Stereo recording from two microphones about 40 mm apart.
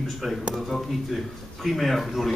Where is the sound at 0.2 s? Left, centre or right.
Centre.